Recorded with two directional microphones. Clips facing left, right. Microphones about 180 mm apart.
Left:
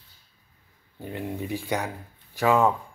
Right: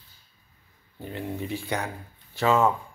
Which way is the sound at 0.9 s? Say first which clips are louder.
Left 1 dB; 15° left (ahead or behind).